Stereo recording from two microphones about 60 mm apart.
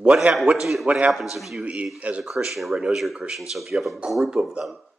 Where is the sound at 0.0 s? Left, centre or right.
Centre.